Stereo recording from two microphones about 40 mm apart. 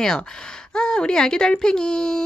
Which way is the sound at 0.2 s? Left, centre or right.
Left.